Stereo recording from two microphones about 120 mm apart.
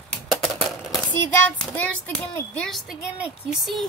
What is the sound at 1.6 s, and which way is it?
Child singing, 10° left (ahead or behind).